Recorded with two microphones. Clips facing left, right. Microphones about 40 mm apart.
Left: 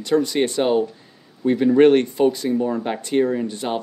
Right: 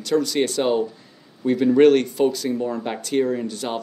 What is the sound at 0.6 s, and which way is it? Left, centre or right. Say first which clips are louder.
Speech: left 2 dB; centre.